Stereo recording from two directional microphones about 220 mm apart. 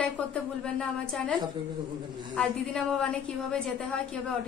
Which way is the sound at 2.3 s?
5° left (ahead or behind).